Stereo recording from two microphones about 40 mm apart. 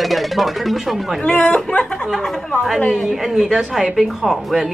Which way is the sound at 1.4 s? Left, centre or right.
Left.